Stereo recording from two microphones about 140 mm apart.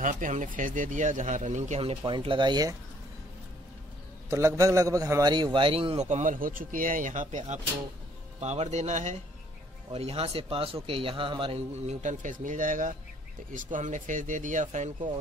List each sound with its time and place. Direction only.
0.0 s speech: 65° right (ahead or behind)
1.8 s speech: 40° right (ahead or behind)
4.3 s a man's voice: 20° right (ahead or behind); by 6.0 s 40° right (ahead or behind)
6.0 s speech: 65° right (ahead or behind)